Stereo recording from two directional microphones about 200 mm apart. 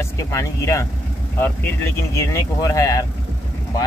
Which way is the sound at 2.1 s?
15° left (ahead or behind).